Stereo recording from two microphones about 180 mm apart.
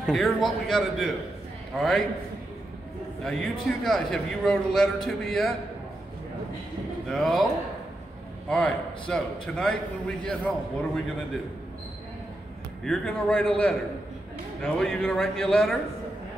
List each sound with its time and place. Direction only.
0.0 s a man's voice: centre (ahead or behind)
3.3 s a man's voice: centre (ahead or behind)
7.1 s a man's voice: centre (ahead or behind)
8.5 s a man's voice: 5° left (ahead or behind)
12.8 s a man's voice: centre (ahead or behind)